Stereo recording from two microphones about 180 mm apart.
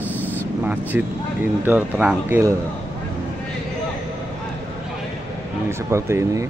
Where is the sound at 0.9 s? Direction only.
10° right (ahead or behind).